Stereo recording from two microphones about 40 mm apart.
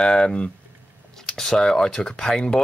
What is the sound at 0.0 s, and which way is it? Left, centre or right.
Speech, left.